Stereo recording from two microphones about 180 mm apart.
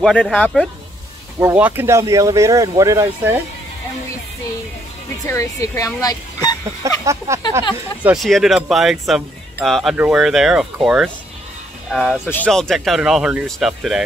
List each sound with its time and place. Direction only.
0.0 s speech: 5° left (ahead or behind)
1.4 s speech: 10° right (ahead or behind)
5.2 s speech: 15° left (ahead or behind)
6.8 s speech: 15° right (ahead or behind)
8.0 s speech: 5° right (ahead or behind)